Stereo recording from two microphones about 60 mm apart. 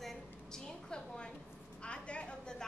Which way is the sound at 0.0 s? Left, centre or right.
Centre.